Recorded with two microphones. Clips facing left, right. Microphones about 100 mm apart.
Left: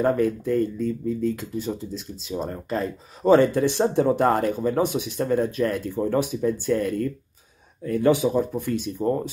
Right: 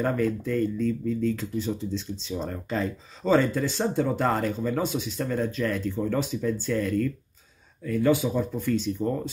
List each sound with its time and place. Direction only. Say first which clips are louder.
0.0 s speech: left 4 dB; 20° left (ahead or behind)
3.3 s speech: left 3 dB; 20° left (ahead or behind)